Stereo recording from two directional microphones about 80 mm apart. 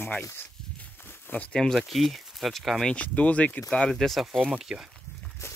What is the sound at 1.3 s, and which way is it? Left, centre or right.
Speech, centre.